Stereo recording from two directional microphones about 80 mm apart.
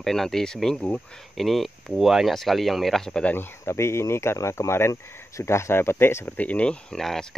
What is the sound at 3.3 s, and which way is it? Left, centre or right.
Speech, left.